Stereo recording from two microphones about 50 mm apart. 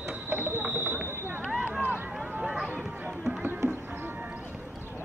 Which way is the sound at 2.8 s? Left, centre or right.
Centre.